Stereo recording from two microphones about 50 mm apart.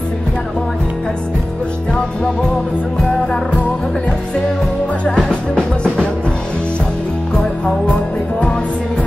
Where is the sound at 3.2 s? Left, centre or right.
Left.